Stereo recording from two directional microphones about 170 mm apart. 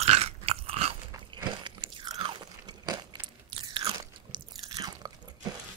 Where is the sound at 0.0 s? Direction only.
40° right (ahead or behind).